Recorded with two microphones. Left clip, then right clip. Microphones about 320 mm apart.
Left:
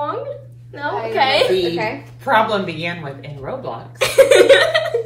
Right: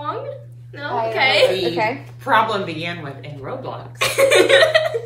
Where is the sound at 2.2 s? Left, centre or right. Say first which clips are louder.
Left 1 dB; centre.